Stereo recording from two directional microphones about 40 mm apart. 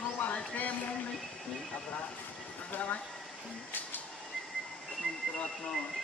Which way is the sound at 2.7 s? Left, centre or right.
Left.